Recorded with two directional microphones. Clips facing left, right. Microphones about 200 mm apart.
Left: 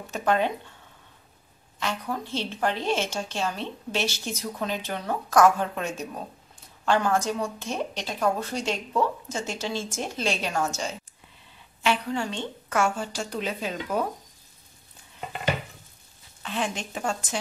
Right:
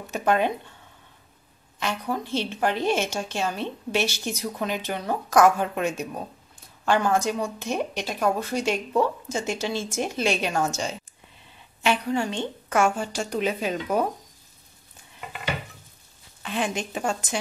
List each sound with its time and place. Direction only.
0.1 s a woman's voice: 10° right (ahead or behind)
2.3 s a woman's voice: 15° right (ahead or behind)
11.8 s a woman's voice: 15° right (ahead or behind)
16.4 s a woman's voice: 15° right (ahead or behind)